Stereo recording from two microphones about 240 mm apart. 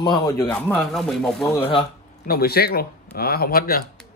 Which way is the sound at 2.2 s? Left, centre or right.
Left.